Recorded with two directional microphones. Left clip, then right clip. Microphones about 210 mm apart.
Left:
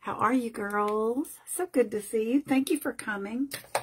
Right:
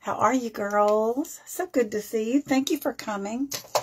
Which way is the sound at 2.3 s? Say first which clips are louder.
Right 3 dB; 35° left (ahead or behind).